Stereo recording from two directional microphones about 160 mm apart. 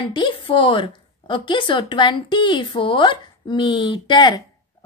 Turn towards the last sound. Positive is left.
turn(degrees=25)  # may be behind; listen again after turning